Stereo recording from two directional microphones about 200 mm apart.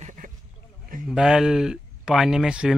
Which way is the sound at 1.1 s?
5° right (ahead or behind).